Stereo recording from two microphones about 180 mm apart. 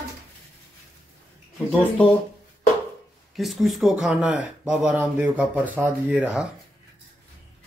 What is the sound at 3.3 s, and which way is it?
Speech, centre (ahead or behind).